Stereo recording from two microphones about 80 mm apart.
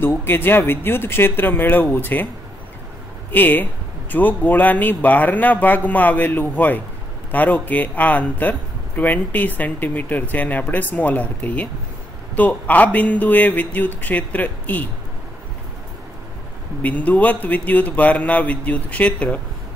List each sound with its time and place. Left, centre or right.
0.0 s a man's voice: left
3.3 s a man's voice: left
16.8 s a man's voice: centre